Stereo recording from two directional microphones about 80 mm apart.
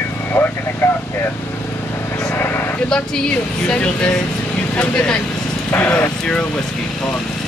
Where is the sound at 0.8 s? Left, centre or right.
Left.